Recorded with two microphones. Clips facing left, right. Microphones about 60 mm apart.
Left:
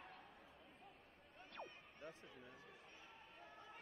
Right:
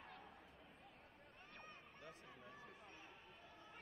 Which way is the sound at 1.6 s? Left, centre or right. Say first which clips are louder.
Left 5 dB; left.